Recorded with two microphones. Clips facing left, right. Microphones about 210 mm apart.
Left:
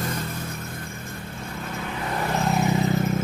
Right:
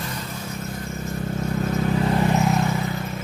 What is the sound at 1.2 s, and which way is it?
Vehicle, 45° right (ahead or behind).